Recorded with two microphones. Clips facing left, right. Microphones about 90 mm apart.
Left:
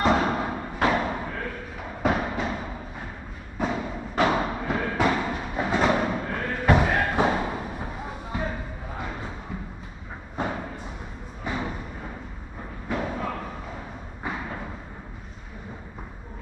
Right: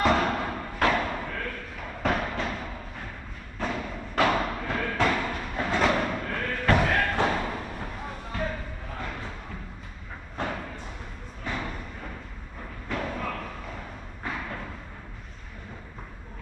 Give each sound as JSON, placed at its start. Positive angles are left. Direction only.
{"t": 0.0, "sound": "thump", "side_deg": 15}
{"t": 4.2, "sound": "music", "side_deg": 15}
{"t": 10.3, "sound": "thump", "side_deg": 15}
{"t": 11.4, "sound": "a sound", "side_deg": 15}
{"t": 12.8, "sound": "thump", "side_deg": 15}
{"t": 14.2, "sound": "music", "side_deg": 15}